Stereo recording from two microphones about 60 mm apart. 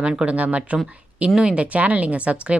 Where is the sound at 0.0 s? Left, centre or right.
Centre.